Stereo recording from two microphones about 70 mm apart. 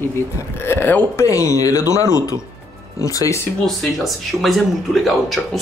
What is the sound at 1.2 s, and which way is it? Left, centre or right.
Speech, left.